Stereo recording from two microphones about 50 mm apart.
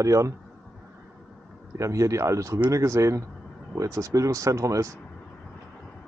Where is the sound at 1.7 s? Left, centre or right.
Right.